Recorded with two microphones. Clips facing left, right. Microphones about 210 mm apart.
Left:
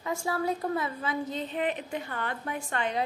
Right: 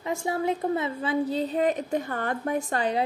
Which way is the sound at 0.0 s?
25° right (ahead or behind).